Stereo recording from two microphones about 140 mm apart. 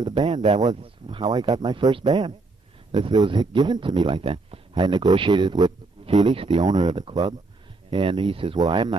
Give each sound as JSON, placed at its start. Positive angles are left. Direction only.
{"t": 0.0, "sound": "speech", "side_deg": -30}
{"t": 0.3, "sound": "speech", "side_deg": -55}
{"t": 0.8, "sound": "speech", "side_deg": -35}
{"t": 6.2, "sound": "speech", "side_deg": -40}
{"t": 6.6, "sound": "speech", "side_deg": -30}